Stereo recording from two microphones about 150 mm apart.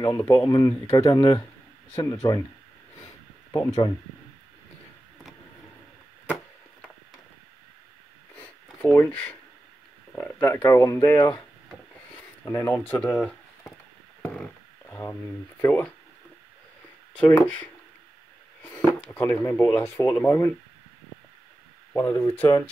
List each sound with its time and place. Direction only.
0.0 s speech: 25° left (ahead or behind)
3.5 s speech: 25° left (ahead or behind)
8.9 s speech: 10° left (ahead or behind)
10.4 s speech: 20° left (ahead or behind)
12.4 s speech: 15° left (ahead or behind)
14.2 s a sound: 10° left (ahead or behind)
15.6 s speech: 15° left (ahead or behind)
17.2 s speech: 10° left (ahead or behind)
18.6 s a sound: 10° left (ahead or behind)
19.0 s speech: 15° left (ahead or behind)
21.9 s speech: 20° left (ahead or behind)